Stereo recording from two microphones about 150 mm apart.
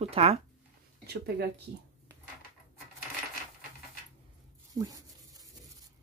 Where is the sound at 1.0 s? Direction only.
90° right.